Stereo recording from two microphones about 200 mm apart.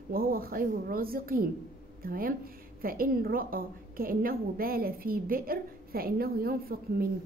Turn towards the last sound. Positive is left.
turn(degrees=-50)  # may be behind; listen again after turning